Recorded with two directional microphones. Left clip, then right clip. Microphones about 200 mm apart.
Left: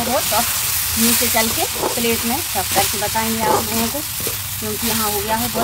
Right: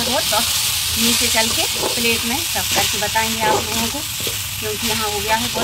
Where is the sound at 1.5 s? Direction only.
10° left (ahead or behind).